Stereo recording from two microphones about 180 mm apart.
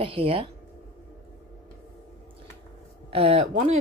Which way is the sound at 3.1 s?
30° right (ahead or behind).